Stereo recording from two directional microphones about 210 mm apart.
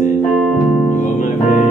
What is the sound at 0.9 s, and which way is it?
Music, 35° left (ahead or behind).